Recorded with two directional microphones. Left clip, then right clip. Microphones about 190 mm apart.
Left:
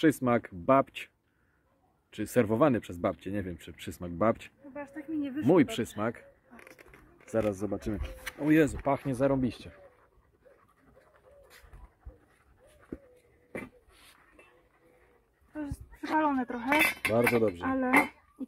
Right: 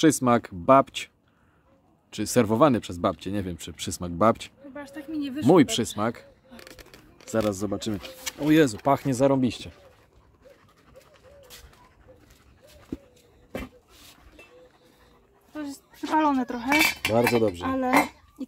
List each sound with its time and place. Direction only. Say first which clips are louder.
0.0 s speech: right 5 dB; 10° right (ahead or behind)
7.4 s speech: right 4 dB; 15° right (ahead or behind)
7.7 s speech: right 5 dB; centre (ahead or behind)
8.8 s speech: right 6 dB; 20° right (ahead or behind)
16.0 s speech: right 5 dB; 10° right (ahead or behind)
17.6 s speech: right 4 dB; 5° left (ahead or behind)